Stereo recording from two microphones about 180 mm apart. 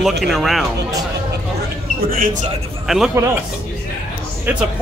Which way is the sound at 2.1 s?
45° right (ahead or behind).